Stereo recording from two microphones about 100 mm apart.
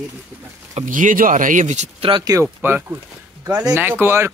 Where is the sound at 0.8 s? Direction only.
90° right.